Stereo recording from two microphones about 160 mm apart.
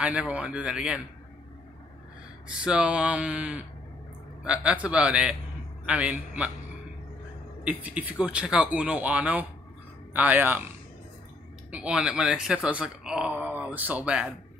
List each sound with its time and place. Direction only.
0.0 s speech: 5° right (ahead or behind)
2.4 s speech: 5° right (ahead or behind)
7.6 s speech: 10° right (ahead or behind)
11.7 s speech: 5° right (ahead or behind)